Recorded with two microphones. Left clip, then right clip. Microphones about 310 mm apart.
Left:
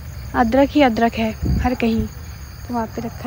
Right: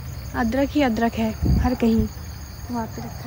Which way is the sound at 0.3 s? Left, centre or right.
Centre.